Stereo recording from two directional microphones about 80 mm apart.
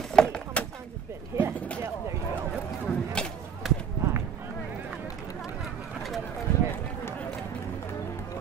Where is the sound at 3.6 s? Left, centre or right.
Centre.